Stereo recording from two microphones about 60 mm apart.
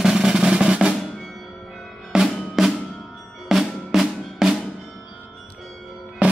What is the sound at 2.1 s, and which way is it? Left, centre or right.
Drum, centre.